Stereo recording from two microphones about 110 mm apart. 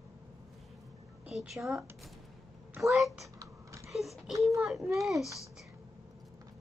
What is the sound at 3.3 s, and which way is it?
Typing, 25° right (ahead or behind).